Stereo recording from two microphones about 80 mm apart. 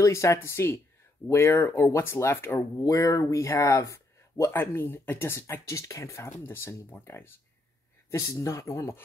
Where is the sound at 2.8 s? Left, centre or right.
Left.